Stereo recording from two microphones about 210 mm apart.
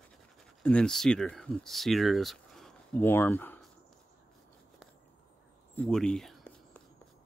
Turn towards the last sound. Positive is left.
turn(degrees=5)  # may be behind; listen again after turning